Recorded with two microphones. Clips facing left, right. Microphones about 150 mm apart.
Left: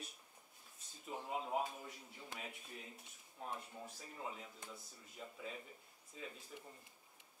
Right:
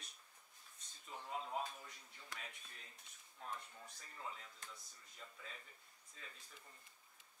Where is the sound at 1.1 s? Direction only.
10° left (ahead or behind).